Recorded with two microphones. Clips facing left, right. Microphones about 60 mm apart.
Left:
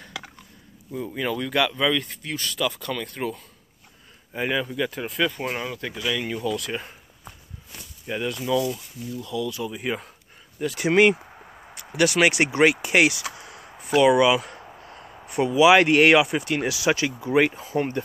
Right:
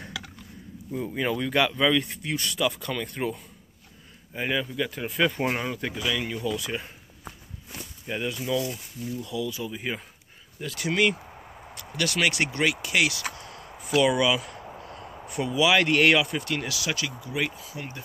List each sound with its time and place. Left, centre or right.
0.9 s speech: centre
4.3 s speech: centre
5.2 s speech: centre
6.0 s speech: centre
6.4 s speech: centre
8.1 s speech: centre
10.8 s speech: left
12.6 s speech: left
14.0 s speech: centre
15.6 s speech: centre; by 18.0 s left